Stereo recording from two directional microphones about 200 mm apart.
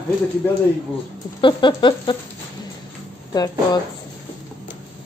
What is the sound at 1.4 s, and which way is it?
Speech, 25° left (ahead or behind).